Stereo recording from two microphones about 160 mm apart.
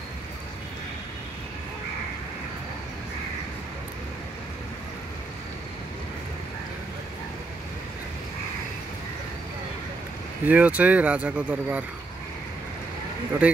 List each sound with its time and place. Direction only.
10.4 s speech: 10° right (ahead or behind)
13.4 s speech: 10° right (ahead or behind)